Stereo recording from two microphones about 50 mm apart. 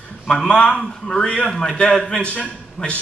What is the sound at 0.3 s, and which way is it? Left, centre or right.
A man's voice, centre.